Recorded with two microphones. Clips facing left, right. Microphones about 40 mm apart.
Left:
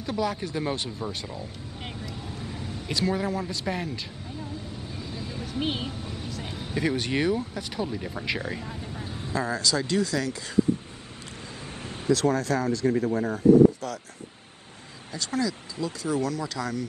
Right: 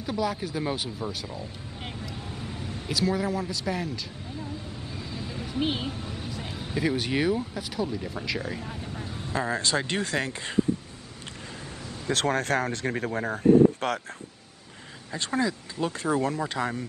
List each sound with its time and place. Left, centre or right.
0.0 s speech: centre
2.9 s a man's voice: centre
5.6 s speech: centre
5.9 s vehicle: centre
6.7 s speech: centre
7.7 s a man's voice: centre
9.3 s speech: right
12.1 s speech: right
15.1 s speech: right
15.8 s speech: right